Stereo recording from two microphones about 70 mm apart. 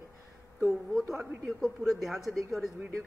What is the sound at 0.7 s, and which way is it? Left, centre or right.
A woman's voice, centre.